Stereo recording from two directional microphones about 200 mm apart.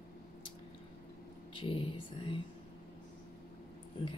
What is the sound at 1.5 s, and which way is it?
Speech, 25° left (ahead or behind).